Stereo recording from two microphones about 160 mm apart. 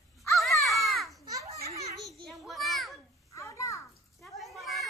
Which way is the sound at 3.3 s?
20° left (ahead or behind).